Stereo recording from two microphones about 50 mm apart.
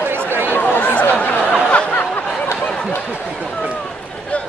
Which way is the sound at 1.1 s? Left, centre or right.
Left.